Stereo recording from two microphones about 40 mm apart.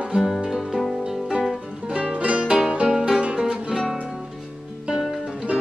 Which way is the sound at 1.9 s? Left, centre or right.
Right.